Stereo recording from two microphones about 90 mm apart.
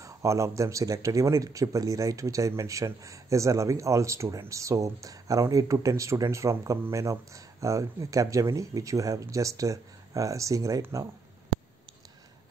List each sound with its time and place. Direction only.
0.0 s speech: 35° right (ahead or behind)